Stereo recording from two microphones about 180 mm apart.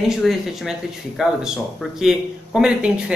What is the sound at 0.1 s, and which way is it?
Speech, centre (ahead or behind).